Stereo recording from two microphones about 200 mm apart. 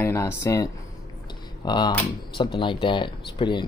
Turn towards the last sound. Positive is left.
turn(degrees=25)  # may be behind; listen again after turning